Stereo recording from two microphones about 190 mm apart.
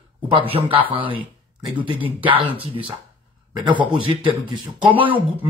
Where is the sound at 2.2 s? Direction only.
25° right (ahead or behind).